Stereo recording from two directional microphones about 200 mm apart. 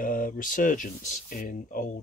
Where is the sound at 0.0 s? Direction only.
45° left (ahead or behind).